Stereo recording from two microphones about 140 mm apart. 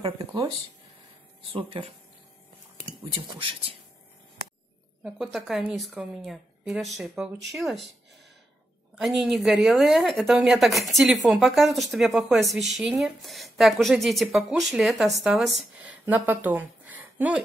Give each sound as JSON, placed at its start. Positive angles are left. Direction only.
{"t": 1.5, "sound": "speech", "side_deg": -40}
{"t": 3.1, "sound": "speech", "side_deg": -40}
{"t": 5.0, "sound": "speech", "side_deg": -5}
{"t": 8.9, "sound": "speech", "side_deg": 0}
{"t": 16.1, "sound": "speech", "side_deg": -10}